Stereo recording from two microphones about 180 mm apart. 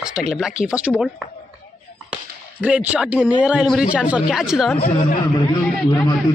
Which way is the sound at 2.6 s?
5° right (ahead or behind).